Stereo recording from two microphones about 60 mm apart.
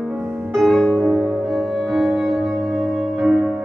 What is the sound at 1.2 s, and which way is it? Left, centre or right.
Music, centre.